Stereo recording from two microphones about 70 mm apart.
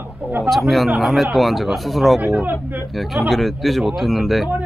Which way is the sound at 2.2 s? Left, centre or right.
Right.